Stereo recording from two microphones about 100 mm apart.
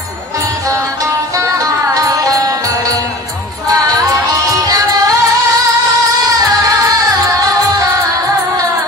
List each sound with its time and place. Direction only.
1.4 s music: 35° right (ahead or behind)